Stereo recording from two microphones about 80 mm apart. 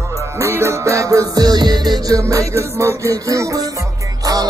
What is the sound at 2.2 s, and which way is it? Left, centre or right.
Music, right.